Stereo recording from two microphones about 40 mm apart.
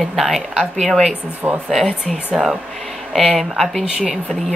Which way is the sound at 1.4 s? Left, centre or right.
Centre.